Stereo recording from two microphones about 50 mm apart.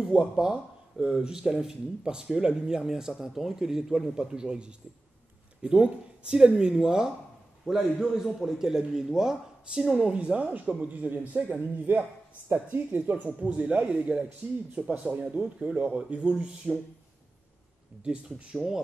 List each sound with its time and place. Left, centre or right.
0.4 s speech: centre
10.0 s a man's voice: right
18.0 s speech: centre